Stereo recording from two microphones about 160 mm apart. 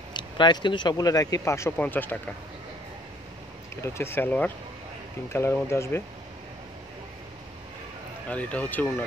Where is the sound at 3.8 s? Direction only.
15° left (ahead or behind).